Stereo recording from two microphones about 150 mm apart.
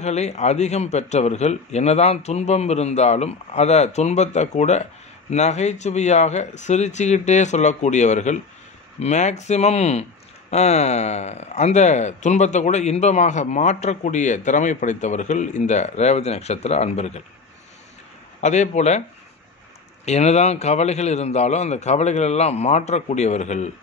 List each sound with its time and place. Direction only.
0.0 s speech: 50° left (ahead or behind)
18.4 s speech: 50° left (ahead or behind)
20.1 s speech: 45° left (ahead or behind)